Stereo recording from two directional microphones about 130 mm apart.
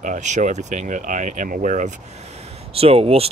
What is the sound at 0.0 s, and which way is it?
Speech, 75° right (ahead or behind).